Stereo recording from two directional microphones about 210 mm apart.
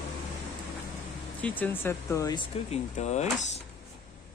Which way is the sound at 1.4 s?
10° left (ahead or behind).